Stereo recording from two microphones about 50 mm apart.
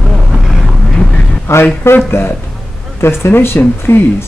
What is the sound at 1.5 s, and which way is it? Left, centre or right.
A man's voice, left.